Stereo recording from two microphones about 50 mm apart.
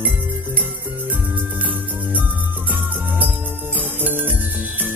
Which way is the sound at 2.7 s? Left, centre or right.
Right.